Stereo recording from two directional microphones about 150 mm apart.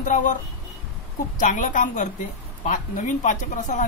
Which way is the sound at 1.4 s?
60° left (ahead or behind).